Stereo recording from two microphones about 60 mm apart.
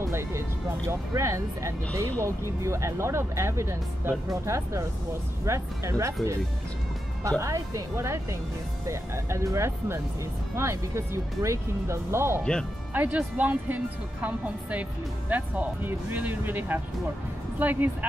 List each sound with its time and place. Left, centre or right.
0.0 s speech: right
7.2 s speech: right
12.9 s speech: right